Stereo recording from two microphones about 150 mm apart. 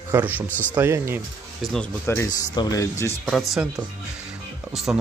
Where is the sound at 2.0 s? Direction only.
15° left (ahead or behind).